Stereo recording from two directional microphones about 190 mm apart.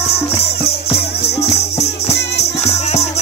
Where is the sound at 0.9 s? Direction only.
55° left (ahead or behind).